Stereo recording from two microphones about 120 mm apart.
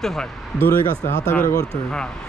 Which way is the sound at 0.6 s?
20° left (ahead or behind).